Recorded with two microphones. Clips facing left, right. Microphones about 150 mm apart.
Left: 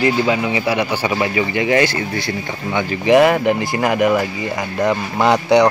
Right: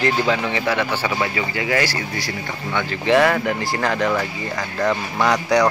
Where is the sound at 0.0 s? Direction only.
10° left (ahead or behind).